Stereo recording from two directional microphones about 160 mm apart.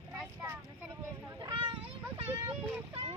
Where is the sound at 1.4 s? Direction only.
30° right (ahead or behind).